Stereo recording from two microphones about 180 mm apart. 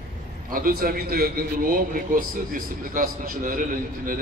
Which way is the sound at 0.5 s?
55° right (ahead or behind).